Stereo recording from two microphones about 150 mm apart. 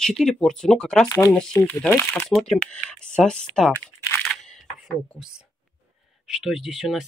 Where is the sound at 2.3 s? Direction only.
5° left (ahead or behind).